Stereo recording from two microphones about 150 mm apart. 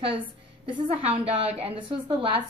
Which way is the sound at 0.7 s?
40° right (ahead or behind).